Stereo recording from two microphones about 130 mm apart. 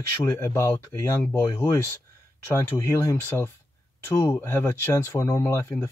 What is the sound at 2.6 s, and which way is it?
Speech, 20° left (ahead or behind).